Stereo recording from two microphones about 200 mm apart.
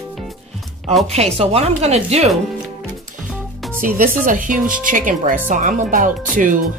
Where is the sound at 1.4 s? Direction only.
30° right (ahead or behind).